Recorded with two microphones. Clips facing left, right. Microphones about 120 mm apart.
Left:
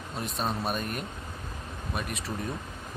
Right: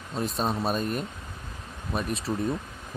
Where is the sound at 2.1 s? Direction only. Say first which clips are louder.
Right 6 dB; 30° right (ahead or behind).